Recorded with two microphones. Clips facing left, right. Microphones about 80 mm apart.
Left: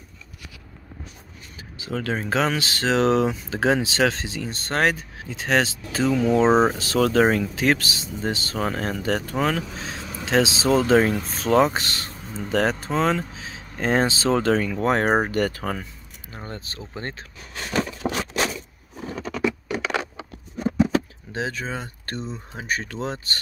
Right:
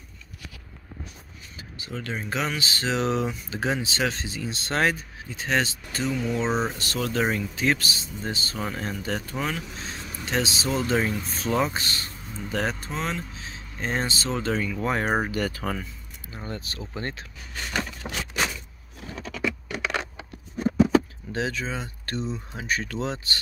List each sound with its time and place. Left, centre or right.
1.8 s speech: left
4.5 s speech: left
4.9 s speech: left
6.4 s speech: left
6.7 s speech: left
8.6 s speech: left
11.0 s speech: left
12.9 s speech: left
14.5 s speech: left
16.3 s a sound: left
16.9 s speech: left
18.9 s patter: centre
21.3 s speech: left
21.5 s speech: left